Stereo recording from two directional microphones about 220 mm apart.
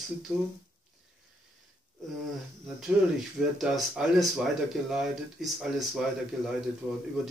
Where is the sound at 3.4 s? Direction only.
Centre (ahead or behind).